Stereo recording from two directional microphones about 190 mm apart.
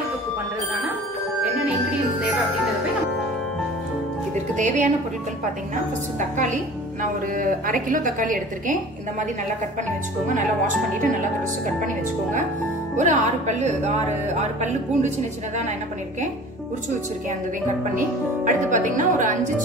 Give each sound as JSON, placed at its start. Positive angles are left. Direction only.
{"t": 4.6, "sound": "speech", "side_deg": -40}
{"t": 6.1, "sound": "a woman's voice", "side_deg": -40}
{"t": 11.6, "sound": "a woman's voice", "side_deg": -40}
{"t": 17.9, "sound": "speech", "side_deg": -40}